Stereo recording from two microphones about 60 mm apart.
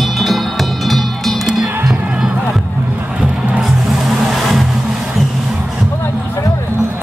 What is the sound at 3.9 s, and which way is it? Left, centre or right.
Vehicle, centre.